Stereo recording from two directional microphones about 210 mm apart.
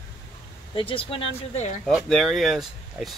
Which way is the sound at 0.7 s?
25° left (ahead or behind).